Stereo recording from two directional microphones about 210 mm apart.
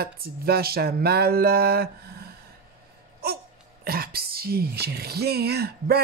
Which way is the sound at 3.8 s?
45° right (ahead or behind).